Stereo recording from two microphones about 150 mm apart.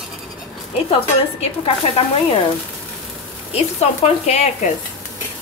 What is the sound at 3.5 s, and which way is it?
Speech, 45° left (ahead or behind).